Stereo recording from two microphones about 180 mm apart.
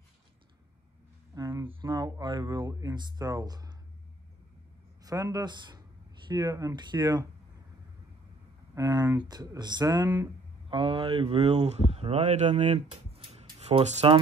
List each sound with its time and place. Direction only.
1.3 s a sound: 20° right (ahead or behind)
1.7 s speech: 25° right (ahead or behind)
5.0 s speech: 20° right (ahead or behind)
8.7 s speech: 20° right (ahead or behind)